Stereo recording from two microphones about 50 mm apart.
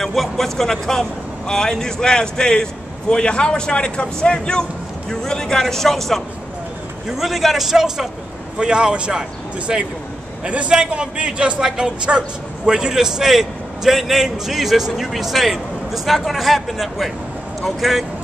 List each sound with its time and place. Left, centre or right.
0.0 s a man's voice: centre
8.5 s a man's voice: centre
10.4 s a man's voice: right; by 18.0 s centre